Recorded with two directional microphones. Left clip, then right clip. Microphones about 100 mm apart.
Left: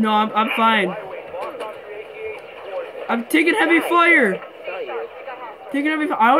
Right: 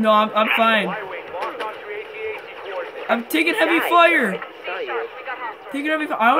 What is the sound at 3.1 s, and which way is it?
A man's voice, 35° right (ahead or behind).